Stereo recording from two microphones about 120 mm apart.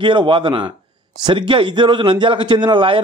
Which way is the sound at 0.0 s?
45° right (ahead or behind).